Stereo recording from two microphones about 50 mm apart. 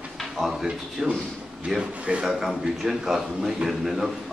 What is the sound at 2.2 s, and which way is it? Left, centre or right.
A man's voice, centre.